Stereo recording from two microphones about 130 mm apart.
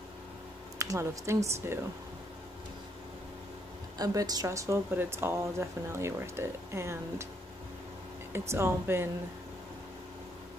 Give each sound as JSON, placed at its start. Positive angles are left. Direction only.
{"t": 0.7, "sound": "speech", "side_deg": -25}
{"t": 4.0, "sound": "speech", "side_deg": -30}
{"t": 8.3, "sound": "speech", "side_deg": -20}